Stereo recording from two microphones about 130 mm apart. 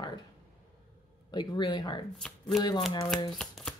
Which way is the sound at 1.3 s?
35° left (ahead or behind).